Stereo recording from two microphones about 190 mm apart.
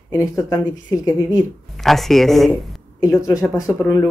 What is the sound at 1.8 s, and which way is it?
Speech, centre (ahead or behind).